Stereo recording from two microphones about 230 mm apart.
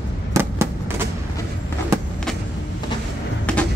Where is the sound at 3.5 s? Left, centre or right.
Centre.